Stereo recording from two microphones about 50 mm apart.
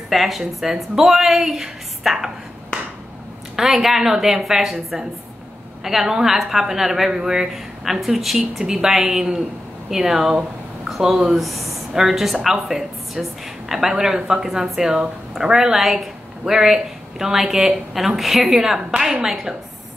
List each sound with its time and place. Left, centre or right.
0.1 s a woman's voice: centre